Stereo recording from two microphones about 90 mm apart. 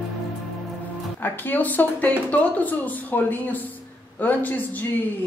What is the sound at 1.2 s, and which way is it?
Speech, 20° left (ahead or behind).